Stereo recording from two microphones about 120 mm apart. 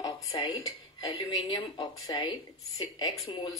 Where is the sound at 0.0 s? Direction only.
35° left (ahead or behind).